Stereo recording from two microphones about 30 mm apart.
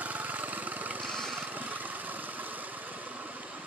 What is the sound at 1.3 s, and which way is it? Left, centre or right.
Vehicle, right.